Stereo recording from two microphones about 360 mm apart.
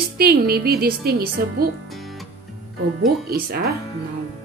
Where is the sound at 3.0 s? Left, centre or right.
Right.